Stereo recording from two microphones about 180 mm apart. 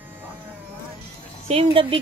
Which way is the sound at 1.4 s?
30° right (ahead or behind).